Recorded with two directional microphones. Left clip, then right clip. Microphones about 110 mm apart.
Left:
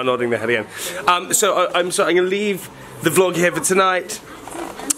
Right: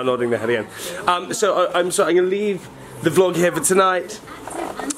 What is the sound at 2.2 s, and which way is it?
Speech, 25° left (ahead or behind).